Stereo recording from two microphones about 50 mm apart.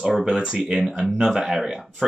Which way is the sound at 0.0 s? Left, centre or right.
Centre.